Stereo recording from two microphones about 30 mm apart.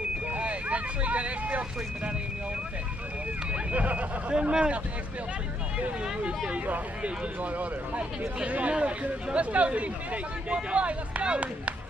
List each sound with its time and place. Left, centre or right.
0.3 s vehicle: right
3.7 s speech: right
4.3 s speech: right
7.9 s speech: right